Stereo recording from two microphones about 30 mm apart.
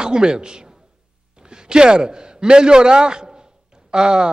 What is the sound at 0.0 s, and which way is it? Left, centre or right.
A man's voice, right.